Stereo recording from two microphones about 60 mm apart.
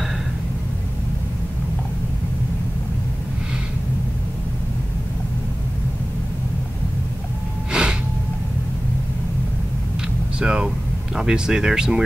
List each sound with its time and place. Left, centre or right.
7.7 s gasp: centre
10.4 s a sound: centre
11.1 s speech: centre